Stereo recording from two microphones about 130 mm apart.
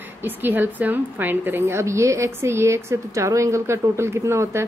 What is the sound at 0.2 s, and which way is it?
A woman's voice, 15° right (ahead or behind).